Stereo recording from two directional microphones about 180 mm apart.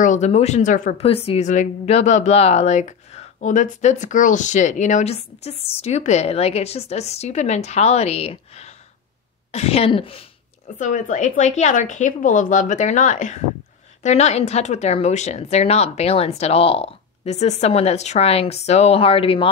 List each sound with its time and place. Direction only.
0.0 s a woman's voice: 40° left (ahead or behind)
1.0 s speech: 30° left (ahead or behind)
10.8 s a woman's voice: 45° left (ahead or behind)